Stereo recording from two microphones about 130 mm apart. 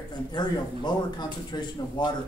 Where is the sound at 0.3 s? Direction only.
35° left (ahead or behind).